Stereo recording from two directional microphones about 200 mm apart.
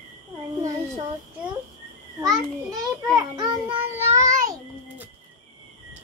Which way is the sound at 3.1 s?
20° right (ahead or behind).